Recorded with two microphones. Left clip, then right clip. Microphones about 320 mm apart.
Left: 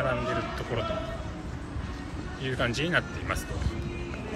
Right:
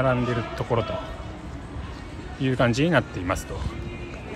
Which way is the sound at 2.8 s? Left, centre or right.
Right.